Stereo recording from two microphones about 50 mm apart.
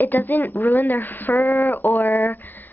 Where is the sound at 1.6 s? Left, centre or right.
Left.